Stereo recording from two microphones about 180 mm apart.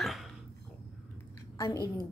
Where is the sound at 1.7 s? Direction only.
20° right (ahead or behind).